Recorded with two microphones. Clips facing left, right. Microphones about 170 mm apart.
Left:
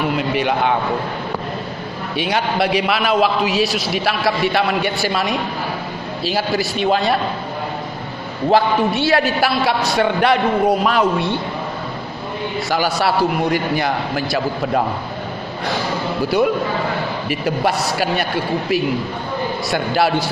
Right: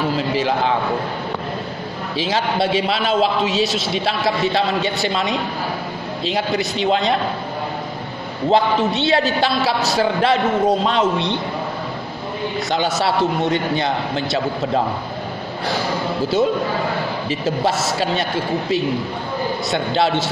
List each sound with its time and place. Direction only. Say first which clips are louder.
0.0 s a man's voice: left 1 dB; 30° right (ahead or behind)
2.1 s a man's voice: left 1 dB; 25° right (ahead or behind)
8.5 s a man's voice: left 1 dB; 20° right (ahead or behind)
12.5 s a man's voice: left 1 dB; 20° right (ahead or behind)
17.3 s a man's voice: left 1 dB; 25° right (ahead or behind)